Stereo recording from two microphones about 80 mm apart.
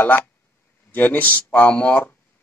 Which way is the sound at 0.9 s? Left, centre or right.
Left.